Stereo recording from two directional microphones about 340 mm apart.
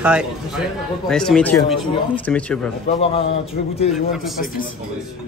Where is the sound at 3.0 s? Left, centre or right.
Centre.